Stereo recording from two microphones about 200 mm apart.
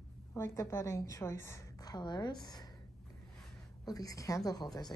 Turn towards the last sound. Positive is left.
turn(degrees=20)  # may be behind; listen again after turning